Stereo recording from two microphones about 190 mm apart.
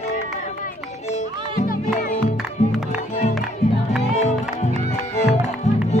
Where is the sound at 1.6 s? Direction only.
45° left (ahead or behind).